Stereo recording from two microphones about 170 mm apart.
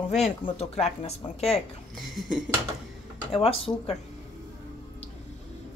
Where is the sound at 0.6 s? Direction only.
40° left (ahead or behind).